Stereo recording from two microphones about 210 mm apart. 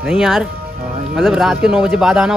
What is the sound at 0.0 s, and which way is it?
Speech, centre (ahead or behind).